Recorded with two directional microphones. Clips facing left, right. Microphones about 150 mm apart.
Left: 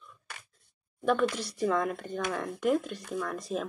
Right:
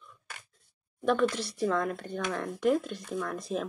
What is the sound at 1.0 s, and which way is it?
Speech, 5° left (ahead or behind).